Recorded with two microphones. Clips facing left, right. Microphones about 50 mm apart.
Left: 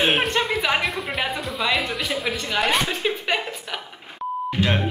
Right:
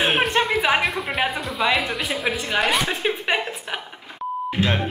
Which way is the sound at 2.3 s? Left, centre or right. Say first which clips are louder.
Right 2 dB; centre.